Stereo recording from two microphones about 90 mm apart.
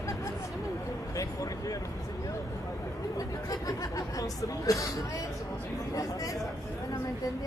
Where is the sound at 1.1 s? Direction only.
40° left (ahead or behind).